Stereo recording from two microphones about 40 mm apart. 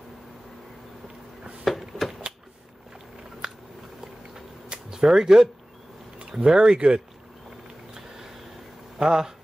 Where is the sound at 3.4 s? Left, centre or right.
Centre.